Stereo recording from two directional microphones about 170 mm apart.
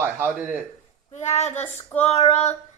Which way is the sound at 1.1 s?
40° left (ahead or behind).